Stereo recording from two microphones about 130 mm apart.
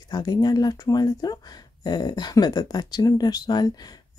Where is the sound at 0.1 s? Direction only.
30° left (ahead or behind).